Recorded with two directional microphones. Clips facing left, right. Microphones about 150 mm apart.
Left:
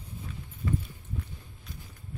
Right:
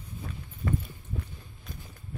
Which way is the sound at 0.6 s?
50° right (ahead or behind).